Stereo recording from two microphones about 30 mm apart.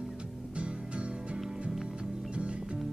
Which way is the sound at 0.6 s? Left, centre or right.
Right.